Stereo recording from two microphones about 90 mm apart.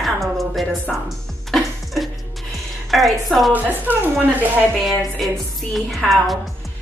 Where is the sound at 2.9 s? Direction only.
Centre (ahead or behind).